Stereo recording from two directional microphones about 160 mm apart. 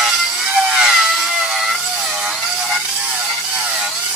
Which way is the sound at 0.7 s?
Centre (ahead or behind).